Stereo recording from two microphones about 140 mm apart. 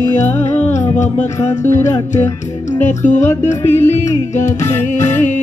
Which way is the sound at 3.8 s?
60° left (ahead or behind).